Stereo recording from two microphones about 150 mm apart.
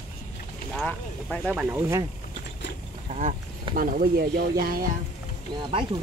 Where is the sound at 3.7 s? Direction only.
75° right (ahead or behind).